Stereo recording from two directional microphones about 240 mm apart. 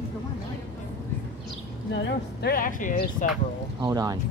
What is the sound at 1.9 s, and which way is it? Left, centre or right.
Speech, left.